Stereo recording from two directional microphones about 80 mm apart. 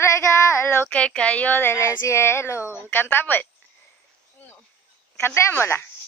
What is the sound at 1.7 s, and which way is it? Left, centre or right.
A woman's voice, left.